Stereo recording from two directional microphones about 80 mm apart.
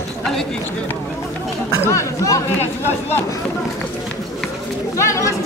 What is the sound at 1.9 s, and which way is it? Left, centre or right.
Speech, left.